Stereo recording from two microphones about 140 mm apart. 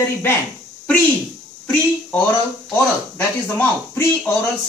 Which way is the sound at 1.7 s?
10° left (ahead or behind).